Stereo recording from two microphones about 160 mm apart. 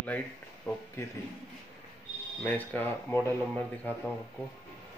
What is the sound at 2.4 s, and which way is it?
Speech, 10° left (ahead or behind).